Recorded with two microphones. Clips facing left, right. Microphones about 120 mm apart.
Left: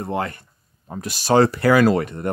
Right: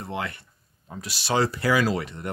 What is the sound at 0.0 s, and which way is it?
Speech, 45° left (ahead or behind).